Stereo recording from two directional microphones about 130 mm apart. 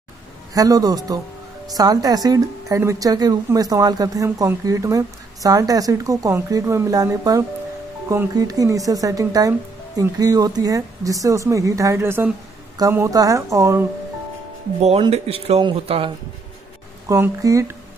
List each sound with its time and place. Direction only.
0.6 s speech: 30° right (ahead or behind)
15.0 s speech: 50° right (ahead or behind)
15.6 s speech: 40° right (ahead or behind)
17.1 s speech: 25° right (ahead or behind)